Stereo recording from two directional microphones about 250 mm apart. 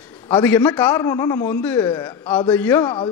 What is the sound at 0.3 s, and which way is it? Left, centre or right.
A man's voice, centre.